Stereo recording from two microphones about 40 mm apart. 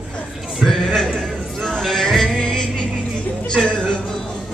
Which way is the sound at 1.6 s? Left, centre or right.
Centre.